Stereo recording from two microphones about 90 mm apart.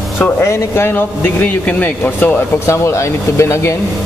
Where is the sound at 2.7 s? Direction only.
35° left (ahead or behind).